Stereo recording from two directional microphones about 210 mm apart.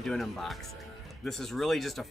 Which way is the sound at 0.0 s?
Centre (ahead or behind).